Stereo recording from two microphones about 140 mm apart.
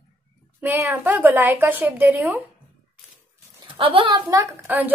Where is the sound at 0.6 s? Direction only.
15° right (ahead or behind).